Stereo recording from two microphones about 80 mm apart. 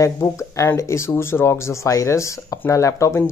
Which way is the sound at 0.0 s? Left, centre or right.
Left.